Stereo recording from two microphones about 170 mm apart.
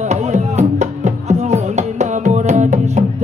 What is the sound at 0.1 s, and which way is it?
Music, 40° right (ahead or behind).